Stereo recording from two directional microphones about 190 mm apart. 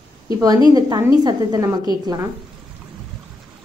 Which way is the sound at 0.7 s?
20° right (ahead or behind).